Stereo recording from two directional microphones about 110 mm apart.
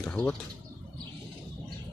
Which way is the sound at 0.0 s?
10° left (ahead or behind).